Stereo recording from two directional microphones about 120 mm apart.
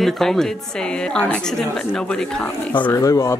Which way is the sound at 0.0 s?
5° left (ahead or behind).